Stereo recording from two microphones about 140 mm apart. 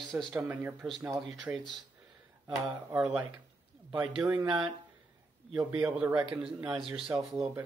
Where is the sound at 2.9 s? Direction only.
10° right (ahead or behind).